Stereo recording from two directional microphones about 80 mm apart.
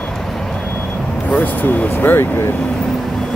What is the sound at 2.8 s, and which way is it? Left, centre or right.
Vehicle, centre.